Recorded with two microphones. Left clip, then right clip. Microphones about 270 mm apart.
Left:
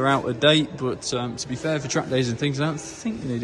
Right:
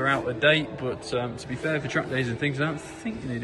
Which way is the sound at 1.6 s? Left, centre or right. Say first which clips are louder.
Left 2 dB; centre.